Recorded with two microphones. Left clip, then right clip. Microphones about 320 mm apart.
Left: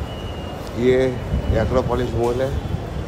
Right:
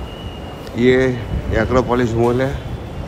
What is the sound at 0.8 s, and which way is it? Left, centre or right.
Speech, right.